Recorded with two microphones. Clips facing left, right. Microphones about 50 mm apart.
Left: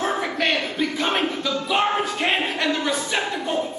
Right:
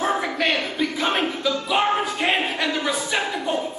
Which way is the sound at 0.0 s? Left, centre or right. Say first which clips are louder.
Right 1 dB; centre.